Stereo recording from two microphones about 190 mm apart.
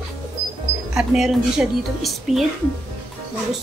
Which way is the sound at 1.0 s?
Centre (ahead or behind).